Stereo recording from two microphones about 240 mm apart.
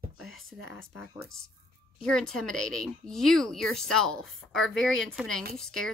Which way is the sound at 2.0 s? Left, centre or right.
Centre.